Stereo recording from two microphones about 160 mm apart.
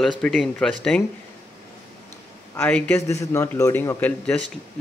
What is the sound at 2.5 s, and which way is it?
A man's voice, 10° left (ahead or behind).